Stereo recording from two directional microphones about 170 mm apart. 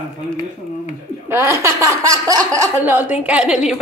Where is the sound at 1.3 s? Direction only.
15° right (ahead or behind).